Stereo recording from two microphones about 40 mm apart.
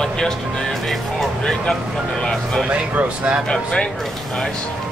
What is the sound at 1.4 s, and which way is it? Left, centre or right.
Speech, centre.